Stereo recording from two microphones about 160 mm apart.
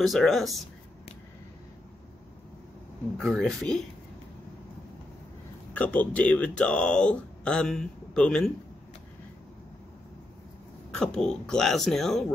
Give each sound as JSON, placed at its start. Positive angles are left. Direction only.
{"t": 0.0, "sound": "speech", "side_deg": 0}
{"t": 3.2, "sound": "speech", "side_deg": 5}
{"t": 5.7, "sound": "speech", "side_deg": 10}
{"t": 10.9, "sound": "speech", "side_deg": 5}